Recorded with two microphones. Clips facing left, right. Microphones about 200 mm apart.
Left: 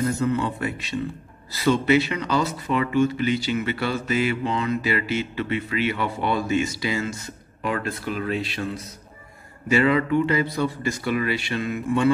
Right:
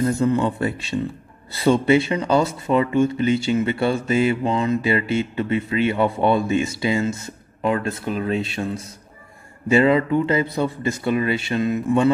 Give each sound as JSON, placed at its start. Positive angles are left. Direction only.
{"t": 0.2, "sound": "speech", "side_deg": -30}